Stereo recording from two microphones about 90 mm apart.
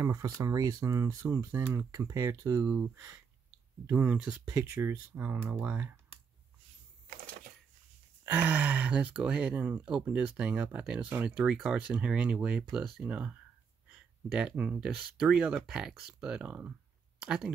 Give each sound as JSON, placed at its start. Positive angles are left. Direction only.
{"t": 0.0, "sound": "speech", "side_deg": -40}
{"t": 3.9, "sound": "speech", "side_deg": -15}
{"t": 4.5, "sound": "speech", "side_deg": -40}
{"t": 4.8, "sound": "speech", "side_deg": -20}
{"t": 8.3, "sound": "speech", "side_deg": -20}
{"t": 11.3, "sound": "speech", "side_deg": -5}
{"t": 13.8, "sound": "a sound", "side_deg": -10}
{"t": 14.6, "sound": "speech", "side_deg": -10}